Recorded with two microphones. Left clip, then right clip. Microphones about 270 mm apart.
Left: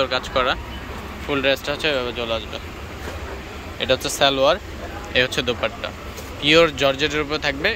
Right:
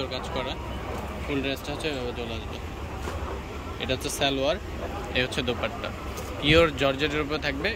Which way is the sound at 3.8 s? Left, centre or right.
Centre.